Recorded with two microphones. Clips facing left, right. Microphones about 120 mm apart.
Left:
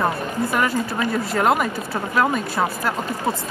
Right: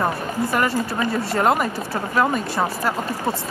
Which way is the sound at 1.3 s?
Centre (ahead or behind).